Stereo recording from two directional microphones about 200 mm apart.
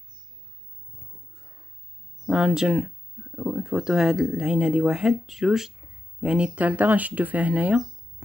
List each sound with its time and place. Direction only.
2.2 s speech: 5° right (ahead or behind)